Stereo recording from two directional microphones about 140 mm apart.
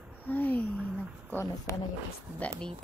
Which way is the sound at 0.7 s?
10° right (ahead or behind).